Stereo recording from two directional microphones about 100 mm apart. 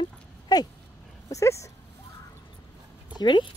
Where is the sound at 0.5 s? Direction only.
40° left (ahead or behind).